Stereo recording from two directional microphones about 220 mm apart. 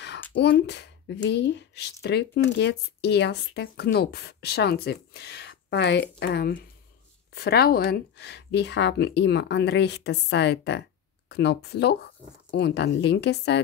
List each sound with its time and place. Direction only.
0.3 s speech: 50° left (ahead or behind)